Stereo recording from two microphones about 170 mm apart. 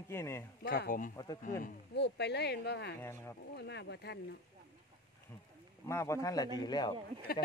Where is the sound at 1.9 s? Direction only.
85° left.